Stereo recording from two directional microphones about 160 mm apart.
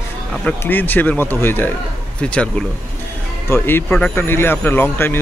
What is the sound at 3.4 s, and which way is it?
Speech, 15° left (ahead or behind).